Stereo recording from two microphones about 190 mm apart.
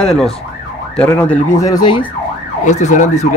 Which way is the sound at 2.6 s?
40° left (ahead or behind).